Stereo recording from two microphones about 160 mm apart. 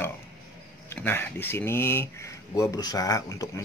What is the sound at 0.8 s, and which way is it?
Speech, 15° left (ahead or behind).